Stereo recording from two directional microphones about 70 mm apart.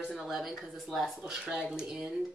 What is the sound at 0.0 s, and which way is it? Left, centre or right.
Speech, centre.